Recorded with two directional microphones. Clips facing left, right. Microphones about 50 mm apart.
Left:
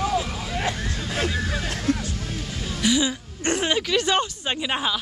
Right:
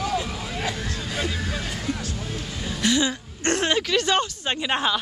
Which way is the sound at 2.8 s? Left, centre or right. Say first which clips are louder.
Even; centre.